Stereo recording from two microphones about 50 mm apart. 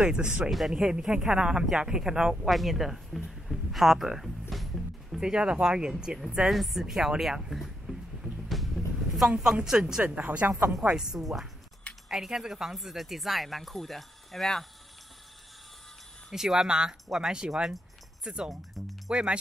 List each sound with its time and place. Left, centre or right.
0.5 s speech: centre
0.7 s speech: centre
2.5 s speech: centre
3.3 s music: centre
5.2 s speech: centre
6.5 s speech: centre
8.2 s music: centre
9.4 s speech: centre
10.0 s speech: right
10.8 s speech: centre
16.3 s speech: centre
18.5 s speech: centre
19.0 s speech: centre